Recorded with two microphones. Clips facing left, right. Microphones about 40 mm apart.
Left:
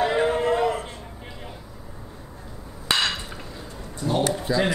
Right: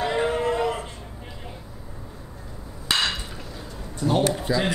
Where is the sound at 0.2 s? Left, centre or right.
Left.